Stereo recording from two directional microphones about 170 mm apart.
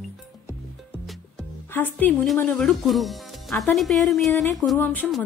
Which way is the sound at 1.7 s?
10° left (ahead or behind).